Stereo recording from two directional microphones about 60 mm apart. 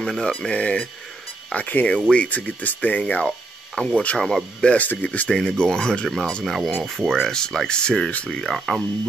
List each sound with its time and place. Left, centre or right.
0.0 s speech: centre
5.6 s speech: centre
8.3 s speech: centre